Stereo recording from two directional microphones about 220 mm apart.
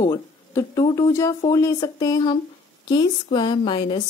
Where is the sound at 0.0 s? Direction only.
15° left (ahead or behind).